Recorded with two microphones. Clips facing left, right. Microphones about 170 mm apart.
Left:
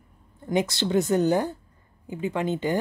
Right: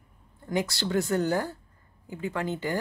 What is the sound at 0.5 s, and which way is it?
A woman's voice, 20° left (ahead or behind).